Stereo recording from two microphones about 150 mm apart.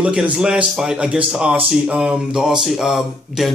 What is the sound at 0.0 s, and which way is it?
Speech, 5° right (ahead or behind).